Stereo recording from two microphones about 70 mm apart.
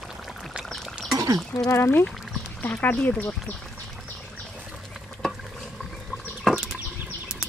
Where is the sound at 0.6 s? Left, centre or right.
Centre.